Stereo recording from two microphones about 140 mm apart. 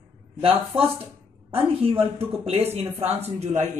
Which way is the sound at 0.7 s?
15° right (ahead or behind).